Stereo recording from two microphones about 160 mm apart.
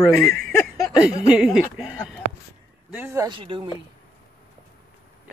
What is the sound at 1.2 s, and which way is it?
Speech, 5° right (ahead or behind).